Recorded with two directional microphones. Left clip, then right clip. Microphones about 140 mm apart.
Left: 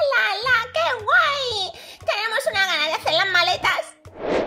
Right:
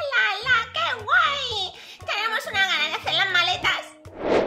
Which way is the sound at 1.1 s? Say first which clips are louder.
Left 1 dB; 55° left (ahead or behind).